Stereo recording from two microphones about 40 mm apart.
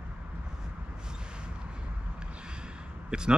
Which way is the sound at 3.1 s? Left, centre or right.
Right.